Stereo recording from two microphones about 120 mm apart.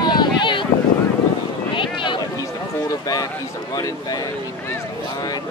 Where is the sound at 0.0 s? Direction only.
40° left (ahead or behind).